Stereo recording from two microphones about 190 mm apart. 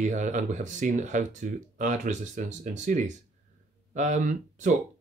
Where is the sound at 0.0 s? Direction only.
40° right (ahead or behind).